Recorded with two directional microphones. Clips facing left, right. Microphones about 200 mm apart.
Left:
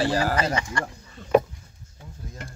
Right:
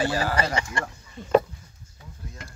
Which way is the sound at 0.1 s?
40° left (ahead or behind).